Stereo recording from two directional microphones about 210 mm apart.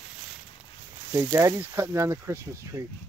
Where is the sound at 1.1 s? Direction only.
15° right (ahead or behind).